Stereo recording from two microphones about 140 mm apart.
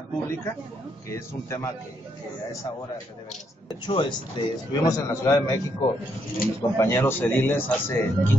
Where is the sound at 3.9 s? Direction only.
35° left (ahead or behind).